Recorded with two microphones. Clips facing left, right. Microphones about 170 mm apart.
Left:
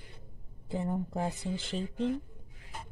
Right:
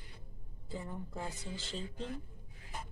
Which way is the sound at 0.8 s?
55° left (ahead or behind).